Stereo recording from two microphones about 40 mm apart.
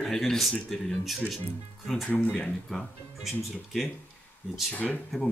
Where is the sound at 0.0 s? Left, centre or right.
Centre.